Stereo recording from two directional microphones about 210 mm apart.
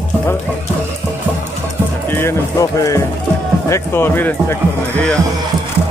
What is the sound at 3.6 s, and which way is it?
Speech, 10° left (ahead or behind).